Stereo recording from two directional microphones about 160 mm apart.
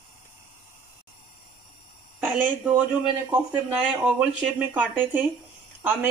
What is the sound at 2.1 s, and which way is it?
Speech, 10° right (ahead or behind).